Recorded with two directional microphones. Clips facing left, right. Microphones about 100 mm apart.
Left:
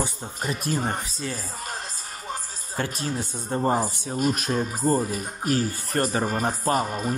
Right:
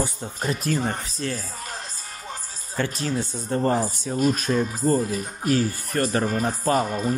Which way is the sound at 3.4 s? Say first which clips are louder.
Right 1 dB; 20° left (ahead or behind).